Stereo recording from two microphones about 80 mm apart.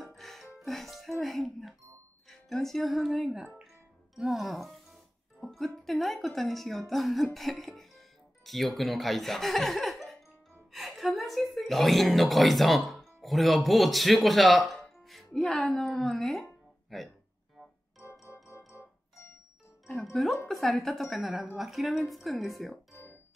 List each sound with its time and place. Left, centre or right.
0.0 s music: centre
2.2 s a woman's voice: centre
18.2 s music: left
18.7 s keyboard: left
19.9 s speech: centre